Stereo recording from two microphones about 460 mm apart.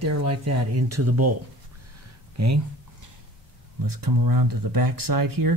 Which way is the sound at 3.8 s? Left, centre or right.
Right.